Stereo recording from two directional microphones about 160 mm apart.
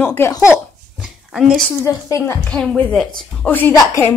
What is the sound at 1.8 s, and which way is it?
A woman's voice, 15° left (ahead or behind).